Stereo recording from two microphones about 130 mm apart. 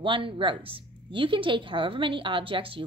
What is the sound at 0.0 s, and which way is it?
A woman's voice, 40° right (ahead or behind).